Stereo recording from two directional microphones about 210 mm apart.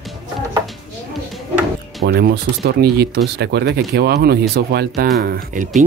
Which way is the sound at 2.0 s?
50° right (ahead or behind).